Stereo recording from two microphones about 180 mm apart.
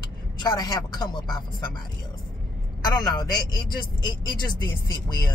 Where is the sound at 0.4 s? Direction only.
20° left (ahead or behind).